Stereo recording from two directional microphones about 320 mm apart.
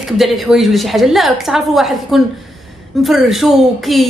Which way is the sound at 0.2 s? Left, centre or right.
Centre.